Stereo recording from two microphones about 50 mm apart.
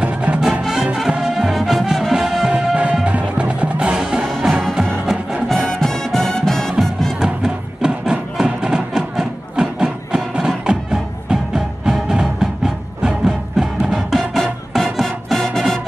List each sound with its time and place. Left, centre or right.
0.0 s music: right
0.4 s music: centre
2.4 s music: right
5.5 s music: centre
7.4 s music: centre